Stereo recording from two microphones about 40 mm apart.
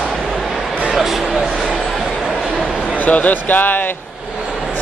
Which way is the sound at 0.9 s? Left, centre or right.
Centre.